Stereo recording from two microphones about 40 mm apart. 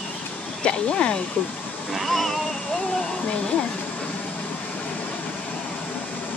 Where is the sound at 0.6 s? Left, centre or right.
Left.